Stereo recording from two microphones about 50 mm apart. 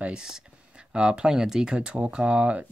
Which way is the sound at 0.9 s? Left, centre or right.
Centre.